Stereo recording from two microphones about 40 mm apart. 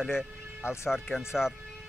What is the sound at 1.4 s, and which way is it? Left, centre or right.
Speech, left.